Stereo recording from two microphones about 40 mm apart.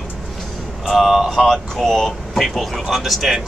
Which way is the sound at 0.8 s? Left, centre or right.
Centre.